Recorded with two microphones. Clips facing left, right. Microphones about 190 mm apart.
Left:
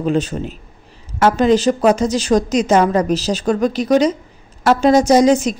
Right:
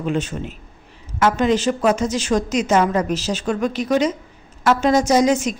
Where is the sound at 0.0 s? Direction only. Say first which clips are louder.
Left 5 dB; 35° left (ahead or behind).